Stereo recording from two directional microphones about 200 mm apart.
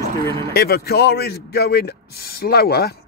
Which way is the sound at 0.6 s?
50° left (ahead or behind).